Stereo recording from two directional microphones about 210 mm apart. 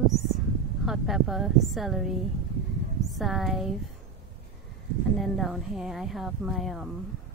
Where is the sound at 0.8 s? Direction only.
Centre (ahead or behind).